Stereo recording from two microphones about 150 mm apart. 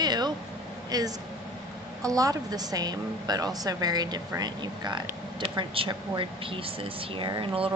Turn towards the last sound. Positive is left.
turn(degrees=-35)  # may be behind; listen again after turning